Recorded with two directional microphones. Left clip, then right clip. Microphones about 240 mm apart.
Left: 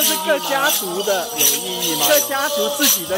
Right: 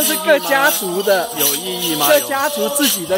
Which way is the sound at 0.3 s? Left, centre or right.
Right.